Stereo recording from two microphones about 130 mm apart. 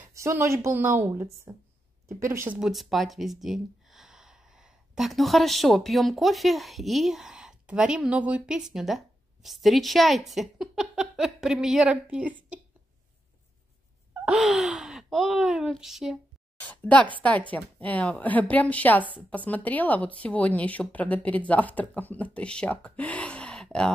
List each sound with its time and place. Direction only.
0.0 s speech: 20° right (ahead or behind)
2.6 s speech: centre (ahead or behind)
14.2 s speech: 5° right (ahead or behind)
16.5 s a woman's voice: 10° left (ahead or behind)